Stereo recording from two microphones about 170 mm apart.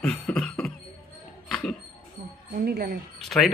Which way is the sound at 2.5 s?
65° right (ahead or behind).